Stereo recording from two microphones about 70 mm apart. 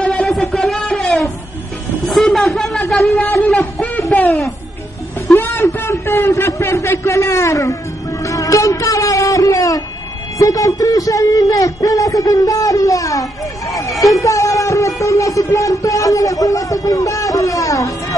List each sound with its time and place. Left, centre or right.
0.0 s music: centre
2.3 s a sound: centre
4.1 s music: left
5.4 s a sound: left
5.8 s a man's voice: left
8.2 s music: left
10.4 s speech: left